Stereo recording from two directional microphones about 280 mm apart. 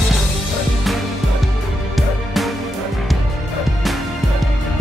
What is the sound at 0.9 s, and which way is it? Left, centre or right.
Music, centre.